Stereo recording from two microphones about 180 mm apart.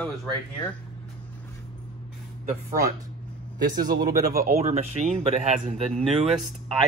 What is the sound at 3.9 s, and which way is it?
Speech, 60° right (ahead or behind).